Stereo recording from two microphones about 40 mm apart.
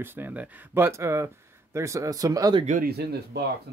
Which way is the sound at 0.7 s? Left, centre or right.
Right.